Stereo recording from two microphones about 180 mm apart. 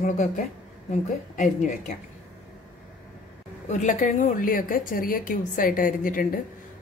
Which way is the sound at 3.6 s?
40° left (ahead or behind).